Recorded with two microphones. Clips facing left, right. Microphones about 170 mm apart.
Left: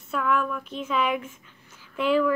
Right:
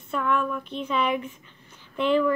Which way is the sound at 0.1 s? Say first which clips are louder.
Even; 5° left (ahead or behind).